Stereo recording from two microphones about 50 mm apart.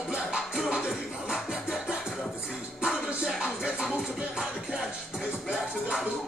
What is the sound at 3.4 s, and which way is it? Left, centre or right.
Music, right.